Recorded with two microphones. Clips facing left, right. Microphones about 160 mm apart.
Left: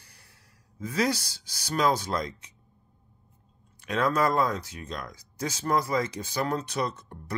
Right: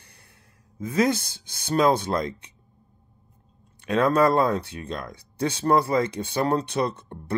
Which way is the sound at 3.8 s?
30° right (ahead or behind).